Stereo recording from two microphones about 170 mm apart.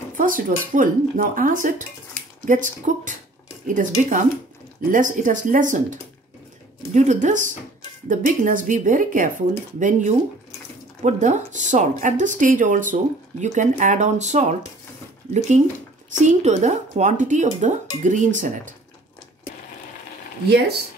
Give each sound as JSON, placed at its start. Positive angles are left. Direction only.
{"t": 0.1, "sound": "speech", "side_deg": -50}
{"t": 16.1, "sound": "speech", "side_deg": -45}
{"t": 20.4, "sound": "speech", "side_deg": -75}